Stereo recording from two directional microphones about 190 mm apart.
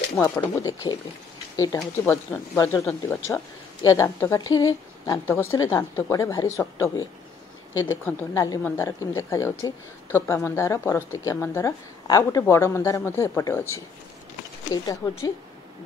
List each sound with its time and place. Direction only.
0.1 s speech: 15° left (ahead or behind)